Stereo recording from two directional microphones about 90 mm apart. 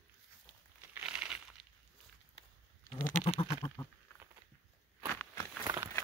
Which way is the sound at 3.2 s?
70° left (ahead or behind).